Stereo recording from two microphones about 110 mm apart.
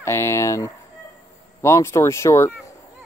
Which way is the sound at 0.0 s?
25° left (ahead or behind).